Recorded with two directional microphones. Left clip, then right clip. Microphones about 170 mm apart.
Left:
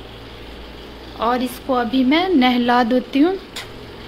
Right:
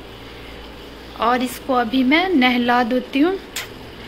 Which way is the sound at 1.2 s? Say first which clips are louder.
Right 1 dB; 5° left (ahead or behind).